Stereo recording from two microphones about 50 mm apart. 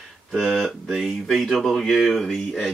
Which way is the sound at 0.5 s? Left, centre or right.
Centre.